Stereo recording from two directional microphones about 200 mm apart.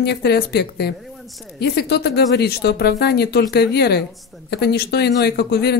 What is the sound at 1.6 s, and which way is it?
Speech, 55° left (ahead or behind).